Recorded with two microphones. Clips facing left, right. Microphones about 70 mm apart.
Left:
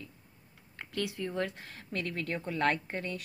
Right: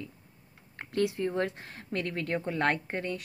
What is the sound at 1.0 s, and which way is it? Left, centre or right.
Speech, right.